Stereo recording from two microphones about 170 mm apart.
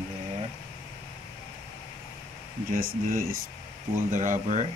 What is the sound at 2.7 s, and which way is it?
Speech, 55° right (ahead or behind).